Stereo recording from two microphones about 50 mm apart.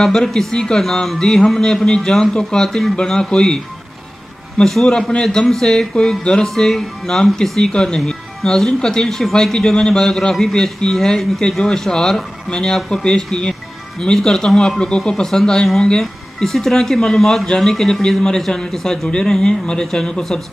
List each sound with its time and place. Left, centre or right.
0.0 s speech: centre